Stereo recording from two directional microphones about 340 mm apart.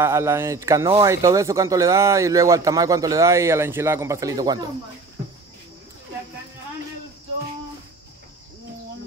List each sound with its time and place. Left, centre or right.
0.0 s speech: centre